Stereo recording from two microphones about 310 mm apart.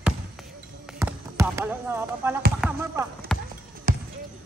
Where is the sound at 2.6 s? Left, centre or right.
Centre.